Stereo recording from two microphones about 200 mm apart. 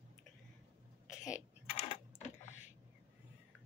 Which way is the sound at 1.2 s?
35° left (ahead or behind).